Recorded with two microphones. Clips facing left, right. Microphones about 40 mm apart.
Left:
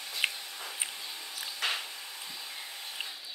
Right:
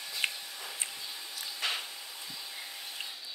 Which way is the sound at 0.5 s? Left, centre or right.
Left.